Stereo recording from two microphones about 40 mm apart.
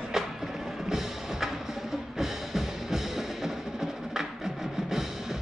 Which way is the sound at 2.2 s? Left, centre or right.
Centre.